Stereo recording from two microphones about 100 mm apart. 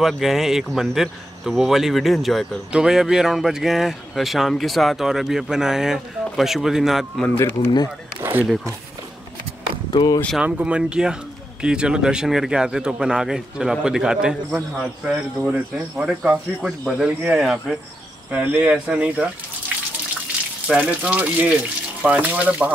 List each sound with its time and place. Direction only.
0.0 s speech: centre (ahead or behind)
8.2 s a sound: 20° right (ahead or behind)
9.9 s speech: 40° left (ahead or behind)
10.4 s speech: 15° right (ahead or behind)
18.3 s speech: 15° right (ahead or behind)
20.6 s speech: 10° right (ahead or behind)